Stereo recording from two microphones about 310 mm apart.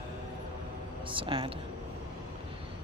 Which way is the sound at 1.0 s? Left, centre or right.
Centre.